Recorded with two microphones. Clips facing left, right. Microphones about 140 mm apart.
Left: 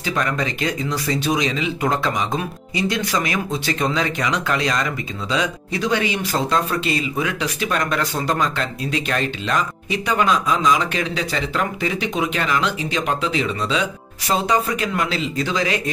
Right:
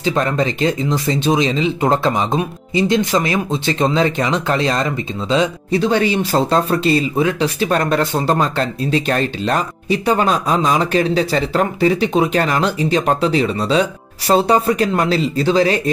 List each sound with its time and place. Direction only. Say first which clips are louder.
0.0 s speech: right 6 dB; 30° right (ahead or behind)